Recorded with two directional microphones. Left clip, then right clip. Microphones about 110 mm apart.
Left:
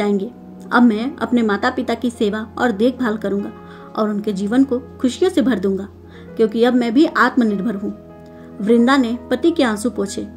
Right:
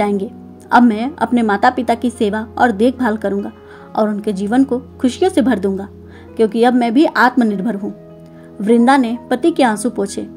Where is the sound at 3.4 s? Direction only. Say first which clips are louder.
Right 1 dB; 40° right (ahead or behind).